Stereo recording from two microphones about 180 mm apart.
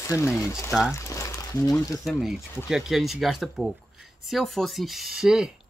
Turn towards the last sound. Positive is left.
turn(degrees=-5)  # may be behind; listen again after turning